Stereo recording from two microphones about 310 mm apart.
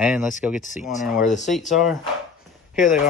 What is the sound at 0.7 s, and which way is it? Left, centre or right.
Speech, left.